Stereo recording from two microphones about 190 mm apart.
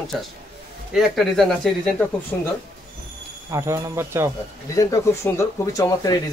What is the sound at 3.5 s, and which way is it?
Speech, 15° right (ahead or behind).